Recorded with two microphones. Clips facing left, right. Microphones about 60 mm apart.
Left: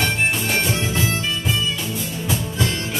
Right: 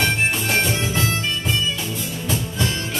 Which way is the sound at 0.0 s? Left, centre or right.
Centre.